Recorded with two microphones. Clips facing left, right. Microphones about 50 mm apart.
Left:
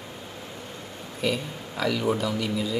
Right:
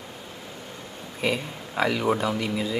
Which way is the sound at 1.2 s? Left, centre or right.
Right.